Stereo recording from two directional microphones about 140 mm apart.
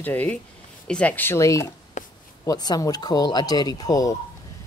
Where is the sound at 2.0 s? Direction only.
65° left (ahead or behind).